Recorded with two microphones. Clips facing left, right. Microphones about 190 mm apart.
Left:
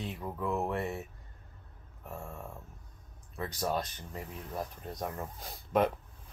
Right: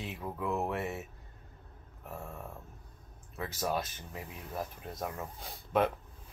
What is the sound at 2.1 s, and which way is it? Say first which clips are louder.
Speech: even; 5° right (ahead or behind).